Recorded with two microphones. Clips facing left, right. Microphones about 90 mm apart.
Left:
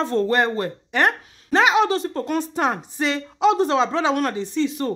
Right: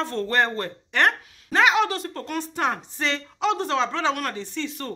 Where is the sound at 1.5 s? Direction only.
20° left (ahead or behind).